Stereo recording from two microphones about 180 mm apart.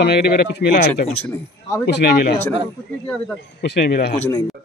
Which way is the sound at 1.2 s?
20° left (ahead or behind).